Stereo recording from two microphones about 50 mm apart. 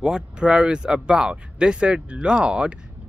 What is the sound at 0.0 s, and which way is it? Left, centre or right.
Speech, centre.